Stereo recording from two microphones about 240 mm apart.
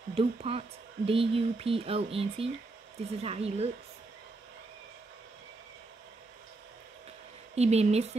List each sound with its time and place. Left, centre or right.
0.1 s speech: right
7.5 s speech: right